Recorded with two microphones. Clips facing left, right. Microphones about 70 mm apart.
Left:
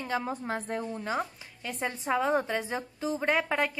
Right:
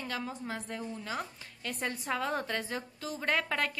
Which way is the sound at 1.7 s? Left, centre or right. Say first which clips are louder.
Left 4 dB; centre.